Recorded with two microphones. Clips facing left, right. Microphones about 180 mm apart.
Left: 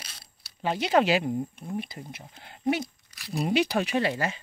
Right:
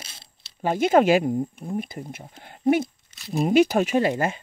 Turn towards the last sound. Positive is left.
turn(degrees=-50)  # may be behind; listen again after turning